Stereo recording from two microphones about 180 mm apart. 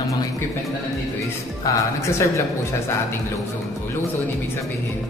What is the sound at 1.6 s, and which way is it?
Speech, 20° left (ahead or behind).